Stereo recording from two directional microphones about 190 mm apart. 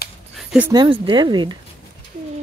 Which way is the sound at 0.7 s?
25° right (ahead or behind).